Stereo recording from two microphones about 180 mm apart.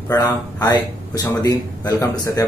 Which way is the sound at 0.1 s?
20° left (ahead or behind).